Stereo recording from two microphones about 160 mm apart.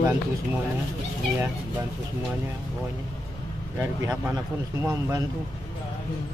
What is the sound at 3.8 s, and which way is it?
Speech, 20° right (ahead or behind).